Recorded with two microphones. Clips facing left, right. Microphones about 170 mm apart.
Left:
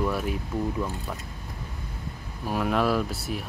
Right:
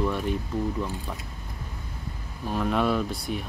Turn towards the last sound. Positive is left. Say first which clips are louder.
# even
turn(degrees=5)  # may be behind; listen again after turning